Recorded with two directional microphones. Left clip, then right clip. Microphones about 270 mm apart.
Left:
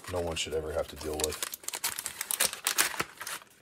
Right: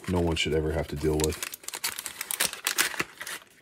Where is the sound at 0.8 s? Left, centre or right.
Centre.